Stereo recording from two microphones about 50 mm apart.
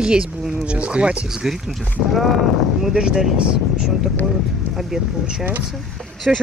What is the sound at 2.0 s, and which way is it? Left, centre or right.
Speech, centre.